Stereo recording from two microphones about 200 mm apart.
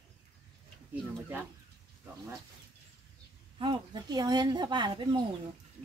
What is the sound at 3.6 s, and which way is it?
Speech, 20° right (ahead or behind).